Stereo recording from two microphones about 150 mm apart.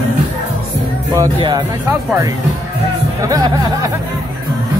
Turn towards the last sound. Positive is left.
turn(degrees=-25)  # may be behind; listen again after turning